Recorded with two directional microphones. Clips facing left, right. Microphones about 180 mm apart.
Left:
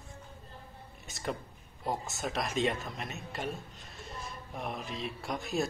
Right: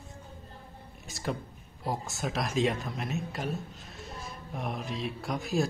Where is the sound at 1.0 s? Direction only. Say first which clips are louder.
Right 2 dB; centre (ahead or behind).